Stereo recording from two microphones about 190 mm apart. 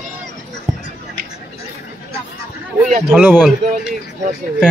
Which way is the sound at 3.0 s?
10° right (ahead or behind).